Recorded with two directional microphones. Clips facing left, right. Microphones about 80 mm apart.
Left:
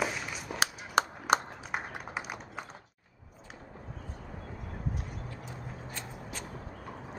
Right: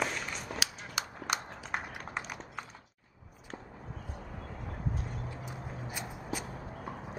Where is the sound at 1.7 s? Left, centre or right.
Centre.